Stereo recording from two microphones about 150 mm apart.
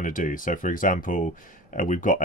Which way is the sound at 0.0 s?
65° left (ahead or behind).